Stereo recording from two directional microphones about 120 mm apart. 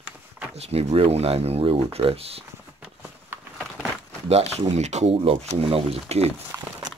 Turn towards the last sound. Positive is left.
turn(degrees=-25)  # may be behind; listen again after turning